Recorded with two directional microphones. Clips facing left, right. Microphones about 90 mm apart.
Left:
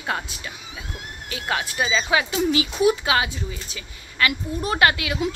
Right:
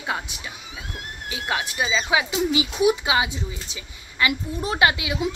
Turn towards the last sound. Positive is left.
turn(degrees=-15)  # may be behind; listen again after turning